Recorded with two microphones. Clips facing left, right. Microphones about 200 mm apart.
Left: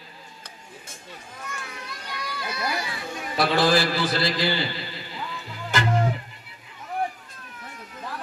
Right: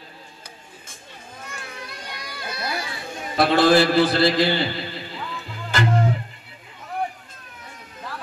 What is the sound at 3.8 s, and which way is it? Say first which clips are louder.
A man's voice: right 7 dB; 55° right (ahead or behind).